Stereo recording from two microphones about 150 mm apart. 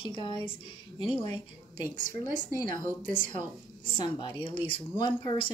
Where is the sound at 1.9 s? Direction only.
60° right (ahead or behind).